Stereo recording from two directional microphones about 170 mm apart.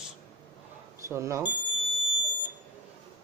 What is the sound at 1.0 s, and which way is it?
Speech, 15° right (ahead or behind).